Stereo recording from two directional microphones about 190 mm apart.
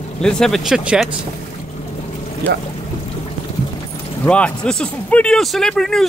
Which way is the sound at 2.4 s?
10° left (ahead or behind).